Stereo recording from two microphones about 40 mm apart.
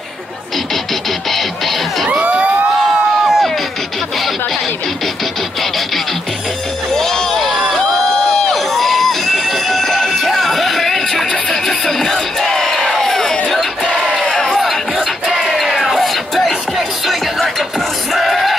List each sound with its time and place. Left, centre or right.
2.2 s crowd: right
2.9 s a sound: centre
6.9 s crowd: centre
15.0 s music: centre